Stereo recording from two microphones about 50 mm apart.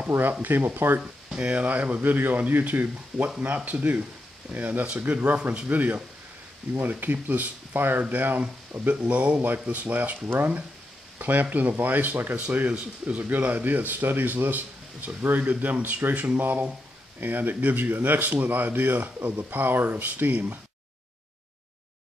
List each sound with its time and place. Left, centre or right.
0.2 s speech: right
1.3 s speech: right
8.9 s speech: right
10.2 s speech: right
11.1 s speech: right
17.2 s speech: right